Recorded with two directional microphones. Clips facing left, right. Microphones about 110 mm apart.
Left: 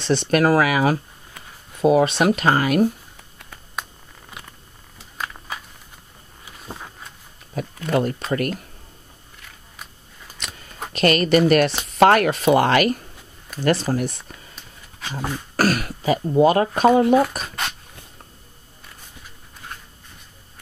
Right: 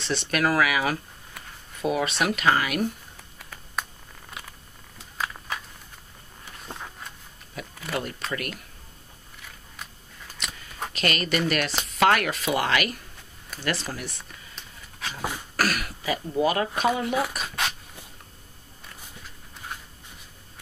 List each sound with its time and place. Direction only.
0.0 s speech: 30° left (ahead or behind)
1.4 s a sound: centre (ahead or behind)
1.8 s speech: 30° left (ahead or behind)
3.3 s a sound: centre (ahead or behind)
7.6 s speech: 40° left (ahead or behind)
10.9 s a woman's voice: 40° left (ahead or behind)
14.5 s a sound: centre (ahead or behind)
15.5 s speech: 35° left (ahead or behind)
17.4 s dog: centre (ahead or behind)